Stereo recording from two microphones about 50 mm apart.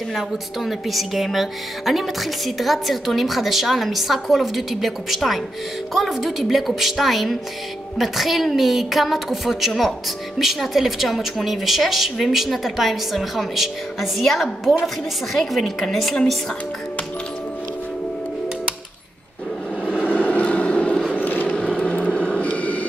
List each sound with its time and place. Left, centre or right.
0.1 s speech: centre
15.3 s speech: centre
19.8 s vehicle: left
21.2 s vehicle: left
21.5 s a sound: left